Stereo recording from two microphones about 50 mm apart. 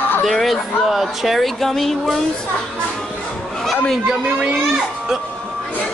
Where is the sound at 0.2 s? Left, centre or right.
Centre.